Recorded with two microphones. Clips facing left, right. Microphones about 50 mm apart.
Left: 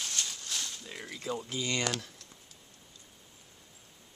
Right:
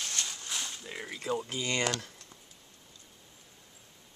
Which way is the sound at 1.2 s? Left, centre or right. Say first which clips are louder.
Right 2 dB; right.